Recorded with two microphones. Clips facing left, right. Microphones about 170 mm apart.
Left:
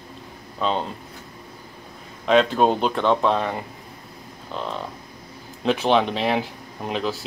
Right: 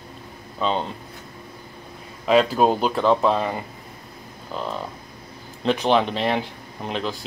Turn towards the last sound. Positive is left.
turn(degrees=5)  # may be behind; listen again after turning